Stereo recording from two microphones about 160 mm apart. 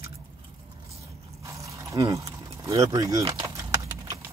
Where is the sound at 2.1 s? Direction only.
20° right (ahead or behind).